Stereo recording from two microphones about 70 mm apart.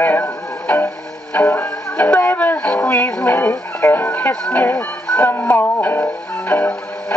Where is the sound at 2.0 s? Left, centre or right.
Left.